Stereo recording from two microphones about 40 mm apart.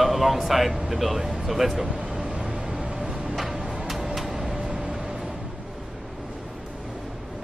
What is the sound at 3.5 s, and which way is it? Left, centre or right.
Music, centre.